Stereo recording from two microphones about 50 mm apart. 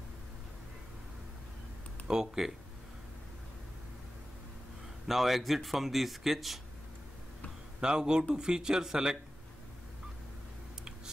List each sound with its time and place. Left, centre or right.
2.0 s speech: centre
5.0 s speech: centre
7.8 s speech: centre